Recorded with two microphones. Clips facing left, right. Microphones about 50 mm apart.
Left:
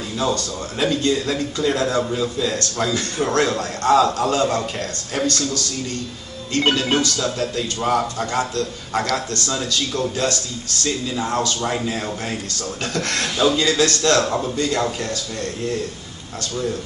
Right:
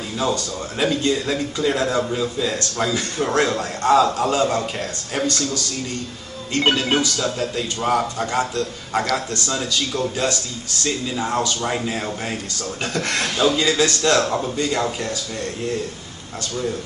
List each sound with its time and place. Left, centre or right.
0.2 s a man's voice: centre
6.6 s a man's voice: centre
14.2 s a man's voice: centre